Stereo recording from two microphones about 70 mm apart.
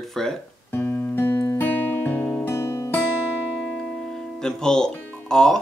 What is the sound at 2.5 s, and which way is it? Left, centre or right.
Music, left.